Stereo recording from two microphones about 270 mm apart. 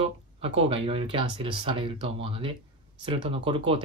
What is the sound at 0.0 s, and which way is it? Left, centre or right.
Speech, right.